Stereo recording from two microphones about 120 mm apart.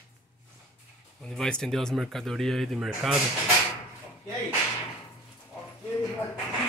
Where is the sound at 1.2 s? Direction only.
5° left (ahead or behind).